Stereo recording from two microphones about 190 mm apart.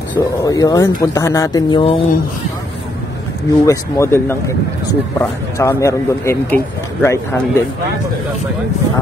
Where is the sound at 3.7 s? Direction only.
15° left (ahead or behind).